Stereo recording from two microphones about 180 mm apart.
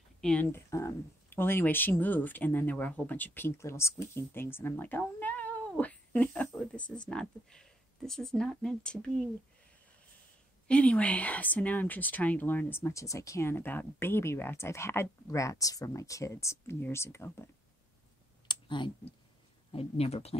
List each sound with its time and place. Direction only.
0.2 s speech: 5° left (ahead or behind)
10.7 s speech: 5° left (ahead or behind)
18.5 s speech: 25° left (ahead or behind)